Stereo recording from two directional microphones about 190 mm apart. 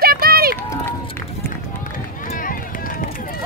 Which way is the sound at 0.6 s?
10° left (ahead or behind).